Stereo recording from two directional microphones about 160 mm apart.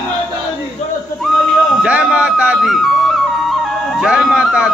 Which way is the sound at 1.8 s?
5° right (ahead or behind).